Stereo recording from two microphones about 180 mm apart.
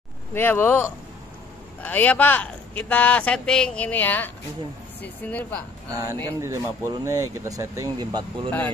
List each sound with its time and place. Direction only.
0.3 s speech: 10° left (ahead or behind)
6.2 s speech: 15° right (ahead or behind)
8.5 s speech: 10° left (ahead or behind)